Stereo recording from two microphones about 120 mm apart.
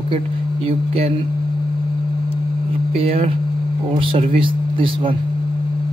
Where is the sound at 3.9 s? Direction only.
45° right (ahead or behind).